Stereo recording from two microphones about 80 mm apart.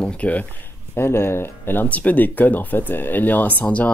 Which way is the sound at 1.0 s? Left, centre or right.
Left.